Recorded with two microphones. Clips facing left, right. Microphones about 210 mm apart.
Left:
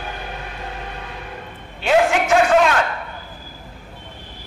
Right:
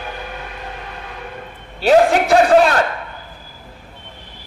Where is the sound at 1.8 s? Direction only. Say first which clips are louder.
Right 4 dB; 35° right (ahead or behind).